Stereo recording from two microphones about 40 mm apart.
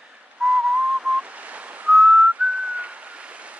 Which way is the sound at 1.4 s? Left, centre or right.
Right.